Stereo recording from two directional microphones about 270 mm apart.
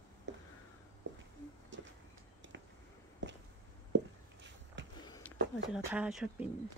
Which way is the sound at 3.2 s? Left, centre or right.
Right.